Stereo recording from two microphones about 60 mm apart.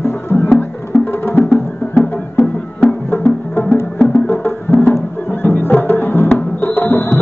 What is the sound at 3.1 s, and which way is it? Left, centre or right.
Music, left.